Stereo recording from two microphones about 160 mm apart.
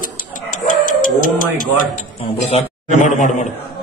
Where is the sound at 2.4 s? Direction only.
45° left (ahead or behind).